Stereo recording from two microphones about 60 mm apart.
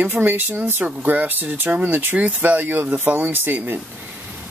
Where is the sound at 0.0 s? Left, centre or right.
Right.